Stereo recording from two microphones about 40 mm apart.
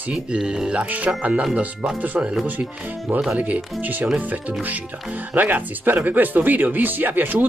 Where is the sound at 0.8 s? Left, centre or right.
Right.